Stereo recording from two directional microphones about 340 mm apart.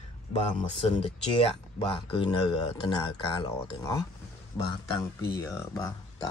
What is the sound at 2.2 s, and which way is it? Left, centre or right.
Speech, centre.